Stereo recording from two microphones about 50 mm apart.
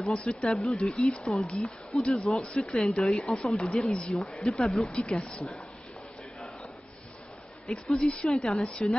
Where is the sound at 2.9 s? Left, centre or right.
Centre.